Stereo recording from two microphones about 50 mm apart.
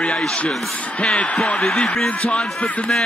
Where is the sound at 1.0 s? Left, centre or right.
Left.